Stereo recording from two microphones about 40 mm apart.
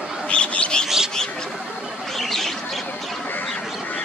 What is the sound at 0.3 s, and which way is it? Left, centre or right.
Bird, left.